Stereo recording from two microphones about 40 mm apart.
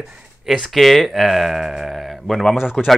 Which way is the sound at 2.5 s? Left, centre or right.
Centre.